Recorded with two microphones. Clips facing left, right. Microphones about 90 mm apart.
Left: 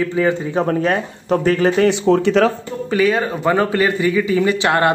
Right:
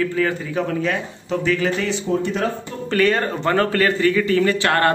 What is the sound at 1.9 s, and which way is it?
Speech, 85° left.